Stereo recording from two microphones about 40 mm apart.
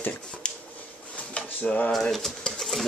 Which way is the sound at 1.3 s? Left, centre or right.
Left.